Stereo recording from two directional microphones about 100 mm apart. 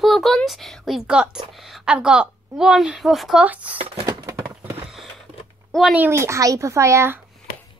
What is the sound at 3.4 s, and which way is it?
Speech, 15° right (ahead or behind).